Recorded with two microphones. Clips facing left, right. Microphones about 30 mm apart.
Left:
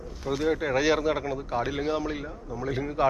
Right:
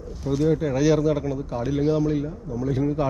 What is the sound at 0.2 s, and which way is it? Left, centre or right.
Speech, centre.